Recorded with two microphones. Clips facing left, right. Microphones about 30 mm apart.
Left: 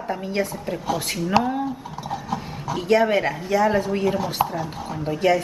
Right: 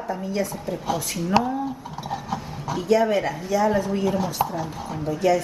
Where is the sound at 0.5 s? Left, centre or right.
Left.